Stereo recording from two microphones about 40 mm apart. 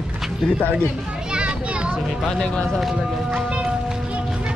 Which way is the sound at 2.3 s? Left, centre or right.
Left.